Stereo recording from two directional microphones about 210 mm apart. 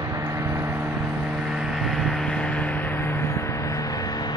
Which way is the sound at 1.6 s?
Centre (ahead or behind).